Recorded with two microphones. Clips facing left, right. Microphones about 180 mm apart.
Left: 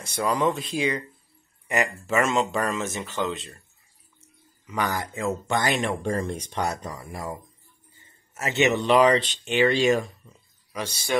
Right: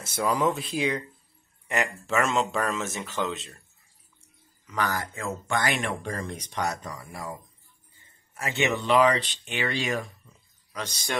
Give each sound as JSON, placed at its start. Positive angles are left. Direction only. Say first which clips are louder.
{"t": 0.0, "sound": "speech", "louder": "left 1 dB", "side_deg": -5}
{"t": 4.6, "sound": "speech", "louder": "left 2 dB", "side_deg": 15}
{"t": 8.4, "sound": "speech", "louder": "left 5 dB", "side_deg": 20}
{"t": 10.2, "sound": "a sound", "louder": "left 5 dB", "side_deg": 45}
{"t": 10.7, "sound": "speech", "louder": "left 4 dB", "side_deg": 10}